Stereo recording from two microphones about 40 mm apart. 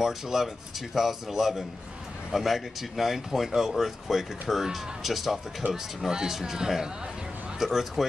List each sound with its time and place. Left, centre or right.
0.0 s speech: centre
5.6 s speech: right
6.0 s speech: centre